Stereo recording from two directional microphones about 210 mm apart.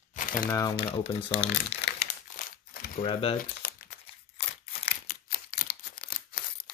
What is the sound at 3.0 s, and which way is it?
Speech, 25° left (ahead or behind).